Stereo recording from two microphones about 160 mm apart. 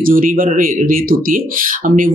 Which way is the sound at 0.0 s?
60° right (ahead or behind).